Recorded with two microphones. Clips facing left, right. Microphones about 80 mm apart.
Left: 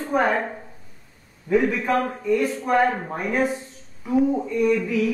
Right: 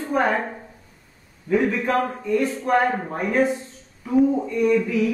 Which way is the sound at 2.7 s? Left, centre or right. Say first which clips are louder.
Even; centre.